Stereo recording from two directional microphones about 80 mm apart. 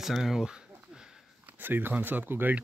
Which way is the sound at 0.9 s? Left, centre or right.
Centre.